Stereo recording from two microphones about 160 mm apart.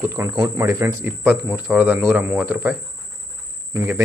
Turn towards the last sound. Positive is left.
turn(degrees=-15)  # may be behind; listen again after turning